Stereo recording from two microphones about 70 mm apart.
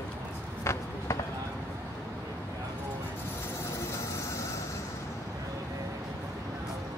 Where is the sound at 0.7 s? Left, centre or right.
Left.